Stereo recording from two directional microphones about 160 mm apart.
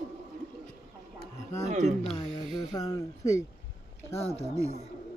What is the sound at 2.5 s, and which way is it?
Speech, 25° left (ahead or behind).